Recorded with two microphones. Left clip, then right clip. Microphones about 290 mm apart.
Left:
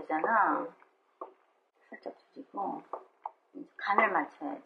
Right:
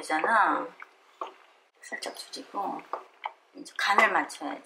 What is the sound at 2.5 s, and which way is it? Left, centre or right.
Speech, centre.